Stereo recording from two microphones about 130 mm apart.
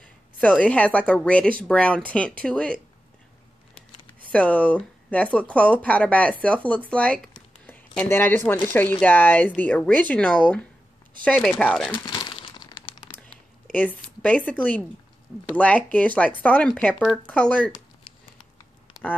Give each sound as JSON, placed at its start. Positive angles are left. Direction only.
{"t": 0.6, "sound": "speech", "side_deg": 10}
{"t": 4.3, "sound": "speech", "side_deg": 10}
{"t": 7.6, "sound": "a sound", "side_deg": 10}
{"t": 8.1, "sound": "speech", "side_deg": 15}
{"t": 11.9, "sound": "crumpling", "side_deg": 35}
{"t": 13.7, "sound": "speech", "side_deg": 10}
{"t": 18.9, "sound": "a sound", "side_deg": 0}